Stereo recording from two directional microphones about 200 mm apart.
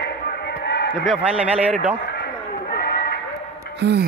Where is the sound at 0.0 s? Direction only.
55° left (ahead or behind).